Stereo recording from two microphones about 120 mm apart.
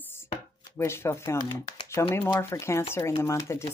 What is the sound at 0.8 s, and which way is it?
Speech, 20° left (ahead or behind).